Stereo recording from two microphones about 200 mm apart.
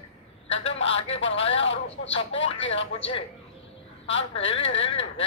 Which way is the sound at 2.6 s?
70° left (ahead or behind).